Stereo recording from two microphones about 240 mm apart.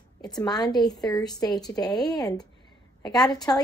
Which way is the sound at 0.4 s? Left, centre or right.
Centre.